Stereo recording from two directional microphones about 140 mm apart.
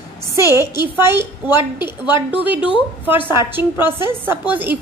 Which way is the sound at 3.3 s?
15° right (ahead or behind).